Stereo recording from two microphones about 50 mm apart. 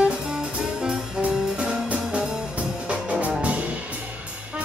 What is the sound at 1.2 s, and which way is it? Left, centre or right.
Music, right.